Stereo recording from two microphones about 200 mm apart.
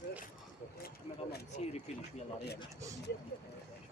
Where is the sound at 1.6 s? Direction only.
35° left (ahead or behind).